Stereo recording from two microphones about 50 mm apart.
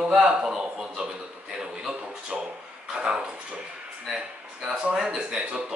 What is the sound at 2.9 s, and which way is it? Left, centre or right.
Speech, centre.